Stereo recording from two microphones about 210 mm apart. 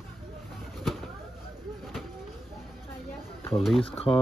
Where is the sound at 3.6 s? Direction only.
Centre (ahead or behind).